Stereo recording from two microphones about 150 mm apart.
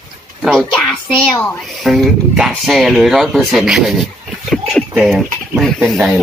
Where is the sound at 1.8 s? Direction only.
Centre (ahead or behind).